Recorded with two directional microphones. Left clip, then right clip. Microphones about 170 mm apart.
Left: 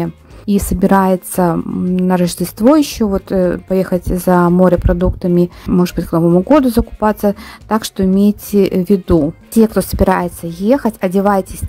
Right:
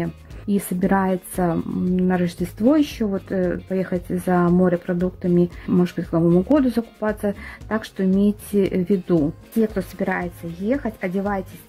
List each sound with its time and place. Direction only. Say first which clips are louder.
0.0 s a woman's voice: left 7 dB; 25° left (ahead or behind)